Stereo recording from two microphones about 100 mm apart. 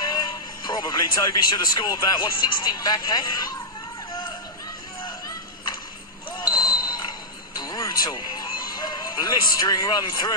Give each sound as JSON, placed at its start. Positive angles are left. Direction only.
{"t": 0.7, "sound": "speech", "side_deg": 40}
{"t": 6.4, "sound": "basketball bounce", "side_deg": 40}
{"t": 9.6, "sound": "speech", "side_deg": 40}